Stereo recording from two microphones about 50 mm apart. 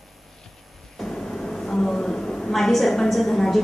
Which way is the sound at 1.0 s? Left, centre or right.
Centre.